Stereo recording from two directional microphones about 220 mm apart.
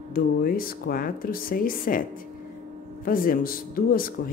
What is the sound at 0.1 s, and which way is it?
Speech, 40° left (ahead or behind).